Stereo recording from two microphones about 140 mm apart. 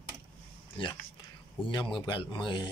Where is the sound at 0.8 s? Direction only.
40° left (ahead or behind).